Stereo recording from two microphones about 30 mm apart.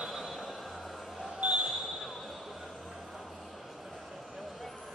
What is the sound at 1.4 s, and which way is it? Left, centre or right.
Basketball bounce, right.